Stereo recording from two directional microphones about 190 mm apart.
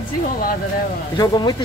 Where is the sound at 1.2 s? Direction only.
20° left (ahead or behind).